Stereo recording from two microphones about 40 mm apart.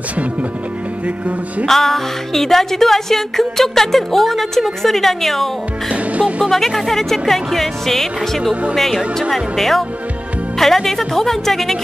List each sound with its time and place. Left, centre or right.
1.0 s music: right
1.7 s music: centre
5.9 s music: right
6.5 s music: centre
9.3 s speech: centre
10.6 s music: centre